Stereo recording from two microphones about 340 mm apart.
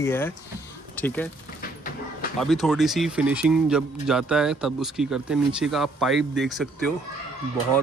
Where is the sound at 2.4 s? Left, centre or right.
Centre.